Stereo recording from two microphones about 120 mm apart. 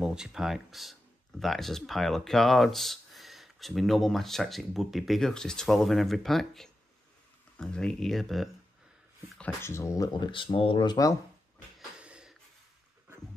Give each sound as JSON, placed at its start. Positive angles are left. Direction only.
{"t": 0.0, "sound": "speech", "side_deg": -5}
{"t": 9.6, "sound": "speech", "side_deg": 25}
{"t": 10.2, "sound": "speech", "side_deg": 45}
{"t": 12.0, "sound": "a sound", "side_deg": -10}